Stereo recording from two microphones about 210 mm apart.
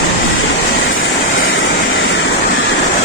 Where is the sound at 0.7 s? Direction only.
65° left (ahead or behind).